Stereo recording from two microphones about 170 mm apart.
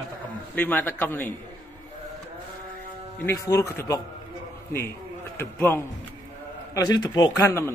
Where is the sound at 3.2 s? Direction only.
20° left (ahead or behind).